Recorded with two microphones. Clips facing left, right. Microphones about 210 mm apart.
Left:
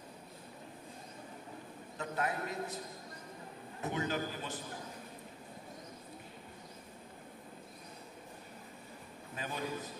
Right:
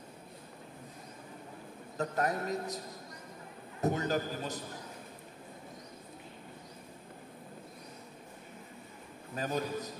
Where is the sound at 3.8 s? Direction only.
40° right (ahead or behind).